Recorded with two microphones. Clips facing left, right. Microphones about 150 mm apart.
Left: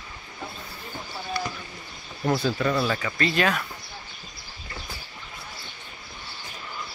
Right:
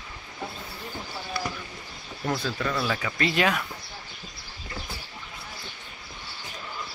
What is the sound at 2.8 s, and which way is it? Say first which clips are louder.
Speech: left 2 dB; 5° right (ahead or behind).